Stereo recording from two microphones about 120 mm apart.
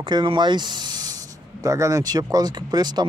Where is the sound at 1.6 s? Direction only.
25° right (ahead or behind).